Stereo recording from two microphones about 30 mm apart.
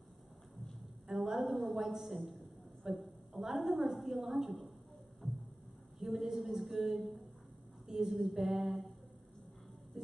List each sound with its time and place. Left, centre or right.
1.0 s a sound: centre
1.4 s a woman's voice: centre
5.9 s a woman's voice: centre
9.9 s music: right